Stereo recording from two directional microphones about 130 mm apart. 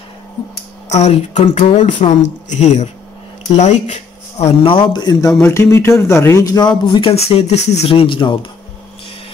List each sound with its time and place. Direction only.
0.9 s speech: 60° left (ahead or behind); by 5.3 s 35° left (ahead or behind)
5.5 s a man's voice: 20° left (ahead or behind)
6.9 s speech: 45° left (ahead or behind)